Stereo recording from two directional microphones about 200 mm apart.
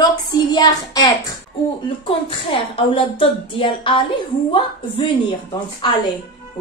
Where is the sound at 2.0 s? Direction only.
25° left (ahead or behind).